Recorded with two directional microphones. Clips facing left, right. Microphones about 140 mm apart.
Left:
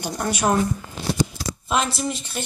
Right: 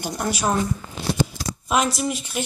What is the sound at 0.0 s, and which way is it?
Speech, 5° right (ahead or behind).